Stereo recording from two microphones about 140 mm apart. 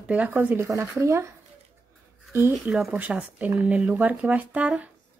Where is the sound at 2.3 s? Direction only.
15° right (ahead or behind).